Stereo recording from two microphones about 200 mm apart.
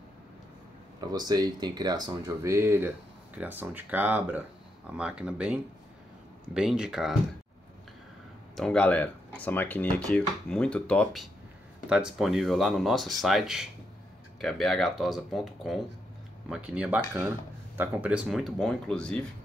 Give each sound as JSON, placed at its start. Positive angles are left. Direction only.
{"t": 1.0, "sound": "speech", "side_deg": -20}
{"t": 8.5, "sound": "speech", "side_deg": 5}